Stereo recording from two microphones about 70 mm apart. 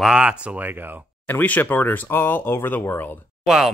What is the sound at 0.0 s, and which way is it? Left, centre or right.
Speech, centre.